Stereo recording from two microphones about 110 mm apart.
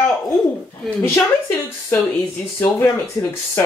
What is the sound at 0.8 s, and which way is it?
A woman's voice, 20° left (ahead or behind).